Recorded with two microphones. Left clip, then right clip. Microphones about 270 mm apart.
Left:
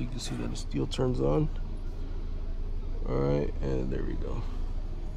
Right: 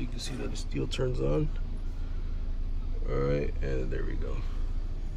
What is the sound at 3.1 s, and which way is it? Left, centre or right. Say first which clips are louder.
Speech: left 1 dB; centre.